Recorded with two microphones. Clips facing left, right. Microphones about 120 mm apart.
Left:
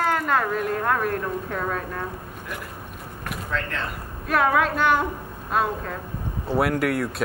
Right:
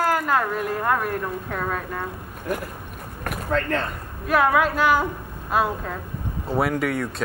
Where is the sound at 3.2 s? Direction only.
45° right (ahead or behind).